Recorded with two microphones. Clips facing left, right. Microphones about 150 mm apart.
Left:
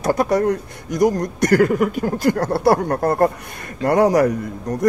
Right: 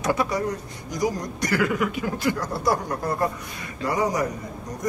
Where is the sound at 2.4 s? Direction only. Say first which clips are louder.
Left 8 dB; 65° left (ahead or behind).